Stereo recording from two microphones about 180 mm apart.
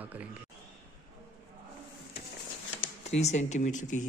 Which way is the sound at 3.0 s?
40° left (ahead or behind).